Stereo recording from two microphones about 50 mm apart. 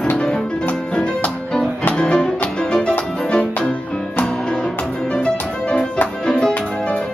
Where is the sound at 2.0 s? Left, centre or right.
Centre.